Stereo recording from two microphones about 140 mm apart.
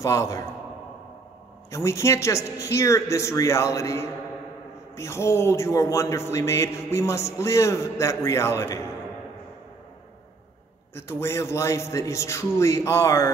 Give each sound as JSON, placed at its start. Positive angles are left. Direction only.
{"t": 0.0, "sound": "speech", "side_deg": 20}
{"t": 1.7, "sound": "speech", "side_deg": 20}
{"t": 11.0, "sound": "speech", "side_deg": 20}